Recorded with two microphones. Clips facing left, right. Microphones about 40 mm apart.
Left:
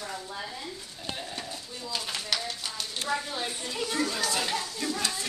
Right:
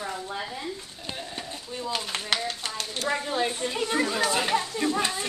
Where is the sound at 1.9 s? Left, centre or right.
Right.